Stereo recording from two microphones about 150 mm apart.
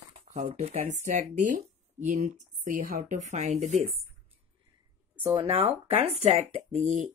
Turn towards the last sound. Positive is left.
turn(degrees=-50)  # may be behind; listen again after turning